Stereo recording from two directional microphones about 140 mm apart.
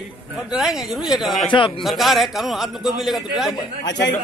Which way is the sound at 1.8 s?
Centre (ahead or behind).